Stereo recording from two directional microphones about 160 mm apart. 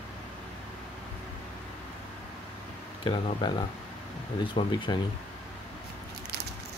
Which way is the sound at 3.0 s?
30° left (ahead or behind).